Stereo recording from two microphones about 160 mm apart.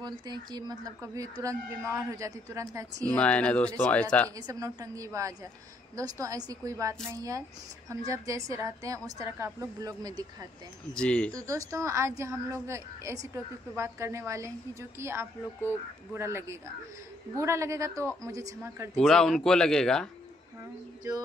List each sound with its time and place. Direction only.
0.0 s speech: 25° right (ahead or behind)
3.1 s speech: 5° left (ahead or behind)
4.4 s speech: 20° right (ahead or behind)
10.9 s speech: 5° left (ahead or behind)
11.3 s a woman's voice: 20° right (ahead or behind)
18.9 s speech: 5° left (ahead or behind)